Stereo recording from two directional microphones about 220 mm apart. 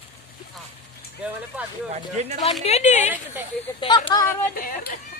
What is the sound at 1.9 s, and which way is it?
Speech, 30° right (ahead or behind).